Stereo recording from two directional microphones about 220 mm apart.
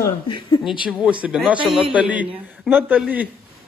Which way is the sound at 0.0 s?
15° left (ahead or behind).